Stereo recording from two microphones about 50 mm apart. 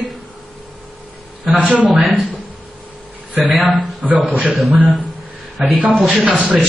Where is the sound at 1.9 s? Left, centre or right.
Centre.